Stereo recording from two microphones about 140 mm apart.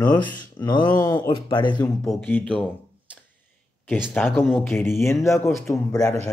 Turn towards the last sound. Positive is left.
turn(degrees=25)  # may be behind; listen again after turning